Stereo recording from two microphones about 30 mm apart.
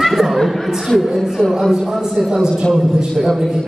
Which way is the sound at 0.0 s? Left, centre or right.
Centre.